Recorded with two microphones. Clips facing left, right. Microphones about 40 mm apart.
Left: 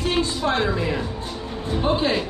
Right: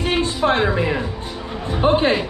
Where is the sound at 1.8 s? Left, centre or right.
Right.